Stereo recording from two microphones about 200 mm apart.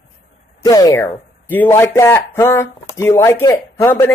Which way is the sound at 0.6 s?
20° left (ahead or behind).